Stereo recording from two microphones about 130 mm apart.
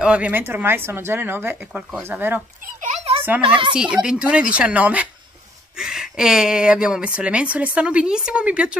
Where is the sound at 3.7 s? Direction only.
5° right (ahead or behind).